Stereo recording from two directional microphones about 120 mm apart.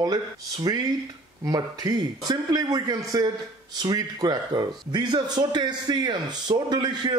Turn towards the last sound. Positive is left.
turn(degrees=-40)  # may be behind; listen again after turning